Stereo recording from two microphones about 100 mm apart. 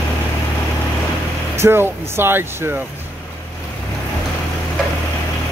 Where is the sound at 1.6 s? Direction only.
25° right (ahead or behind).